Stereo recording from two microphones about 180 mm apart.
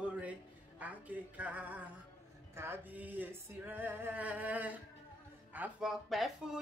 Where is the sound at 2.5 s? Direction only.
15° right (ahead or behind).